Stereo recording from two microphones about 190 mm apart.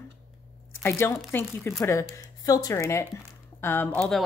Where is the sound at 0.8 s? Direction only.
10° left (ahead or behind).